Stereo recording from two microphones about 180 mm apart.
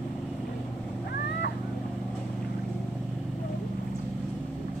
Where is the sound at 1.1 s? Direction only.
60° left (ahead or behind).